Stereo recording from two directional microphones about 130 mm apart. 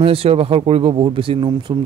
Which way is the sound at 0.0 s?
45° right (ahead or behind).